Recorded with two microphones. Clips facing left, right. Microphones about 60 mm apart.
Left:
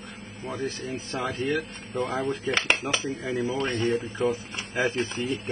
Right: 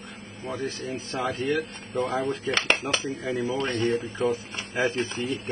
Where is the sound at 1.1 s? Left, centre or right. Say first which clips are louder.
Right 1 dB; centre.